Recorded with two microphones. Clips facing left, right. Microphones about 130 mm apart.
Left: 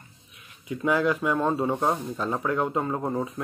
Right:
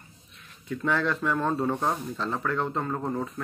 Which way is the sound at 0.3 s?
10° left (ahead or behind).